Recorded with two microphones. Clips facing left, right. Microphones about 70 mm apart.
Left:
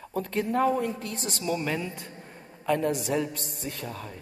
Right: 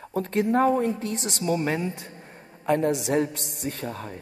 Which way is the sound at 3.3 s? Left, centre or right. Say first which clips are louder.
Right 2 dB; left.